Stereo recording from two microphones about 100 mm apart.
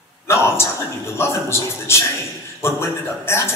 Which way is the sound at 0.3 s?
25° left (ahead or behind).